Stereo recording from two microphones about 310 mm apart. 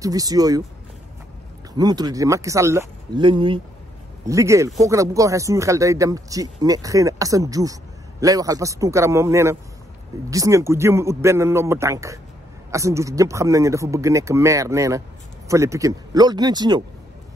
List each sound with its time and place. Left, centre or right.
0.0 s speech: centre
1.8 s speech: centre